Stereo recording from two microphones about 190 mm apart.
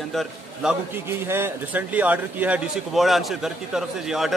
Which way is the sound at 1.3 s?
10° right (ahead or behind).